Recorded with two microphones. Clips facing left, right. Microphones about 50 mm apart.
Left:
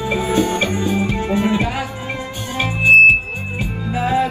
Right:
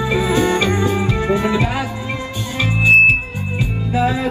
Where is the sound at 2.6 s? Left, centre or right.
Left.